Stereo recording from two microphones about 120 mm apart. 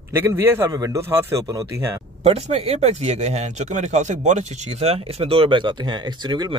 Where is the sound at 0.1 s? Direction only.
20° right (ahead or behind).